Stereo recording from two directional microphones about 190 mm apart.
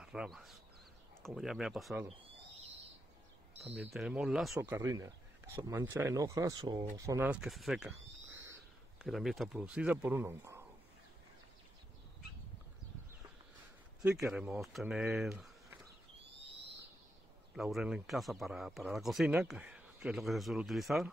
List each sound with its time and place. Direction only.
0.0 s speech: 5° right (ahead or behind)
3.7 s speech: 5° right (ahead or behind)
4.6 s speech: 15° right (ahead or behind)
9.0 s speech: centre (ahead or behind)
14.0 s speech: 5° right (ahead or behind)
15.1 s a sound: centre (ahead or behind)
17.6 s speech: centre (ahead or behind)